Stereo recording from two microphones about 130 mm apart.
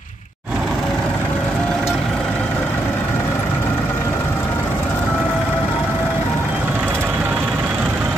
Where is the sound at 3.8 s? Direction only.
15° left (ahead or behind).